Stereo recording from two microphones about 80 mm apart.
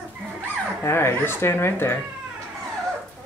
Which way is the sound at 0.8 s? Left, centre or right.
Left.